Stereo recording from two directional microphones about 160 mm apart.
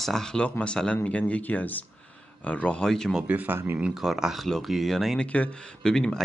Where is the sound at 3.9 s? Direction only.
Centre (ahead or behind).